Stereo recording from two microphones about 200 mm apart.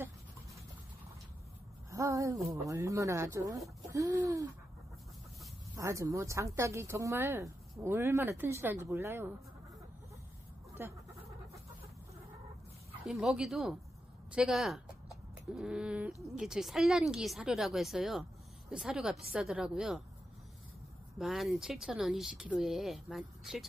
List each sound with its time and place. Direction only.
1.9 s a sound: 15° right (ahead or behind)
2.7 s speech: 15° right (ahead or behind)
5.8 s speech: 15° right (ahead or behind)
10.7 s dog: 15° right (ahead or behind)
13.0 s speech: centre (ahead or behind)
21.2 s speech: centre (ahead or behind)